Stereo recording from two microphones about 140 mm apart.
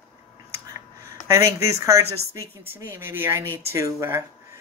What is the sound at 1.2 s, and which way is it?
Speech, 20° right (ahead or behind).